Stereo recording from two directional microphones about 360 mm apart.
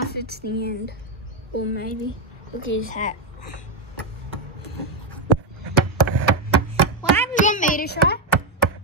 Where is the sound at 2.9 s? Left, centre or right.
Centre.